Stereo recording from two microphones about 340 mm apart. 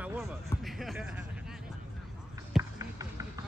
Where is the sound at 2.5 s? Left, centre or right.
Centre.